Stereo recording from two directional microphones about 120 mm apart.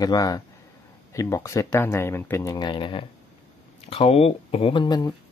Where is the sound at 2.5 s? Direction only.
40° left (ahead or behind).